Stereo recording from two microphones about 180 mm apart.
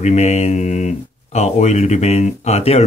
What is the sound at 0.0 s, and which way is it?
Speech, 40° left (ahead or behind).